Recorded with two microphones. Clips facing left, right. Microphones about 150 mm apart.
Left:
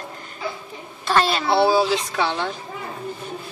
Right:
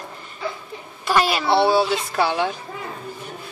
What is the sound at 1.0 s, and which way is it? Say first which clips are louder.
Speech: even; 10° right (ahead or behind).